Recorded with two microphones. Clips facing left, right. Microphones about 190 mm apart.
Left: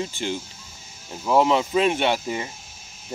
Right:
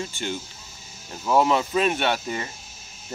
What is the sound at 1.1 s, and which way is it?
Speech, 10° left (ahead or behind).